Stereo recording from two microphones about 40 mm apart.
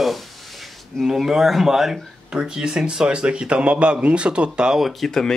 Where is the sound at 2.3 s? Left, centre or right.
Right.